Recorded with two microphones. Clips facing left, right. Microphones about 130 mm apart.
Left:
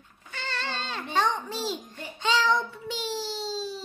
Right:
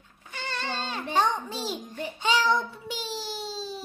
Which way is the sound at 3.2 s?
15° right (ahead or behind).